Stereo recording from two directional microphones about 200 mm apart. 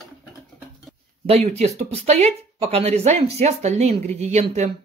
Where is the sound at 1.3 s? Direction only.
30° right (ahead or behind).